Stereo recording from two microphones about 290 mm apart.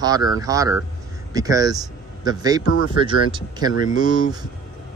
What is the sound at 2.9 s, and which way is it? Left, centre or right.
A man's voice, centre.